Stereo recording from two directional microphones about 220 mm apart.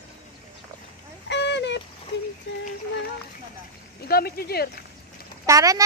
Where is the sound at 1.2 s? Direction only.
50° left (ahead or behind).